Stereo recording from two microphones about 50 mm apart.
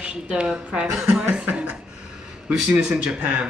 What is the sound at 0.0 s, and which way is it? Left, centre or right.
A woman's voice, centre.